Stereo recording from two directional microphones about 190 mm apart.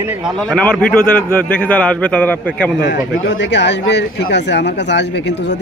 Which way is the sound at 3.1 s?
65° left (ahead or behind).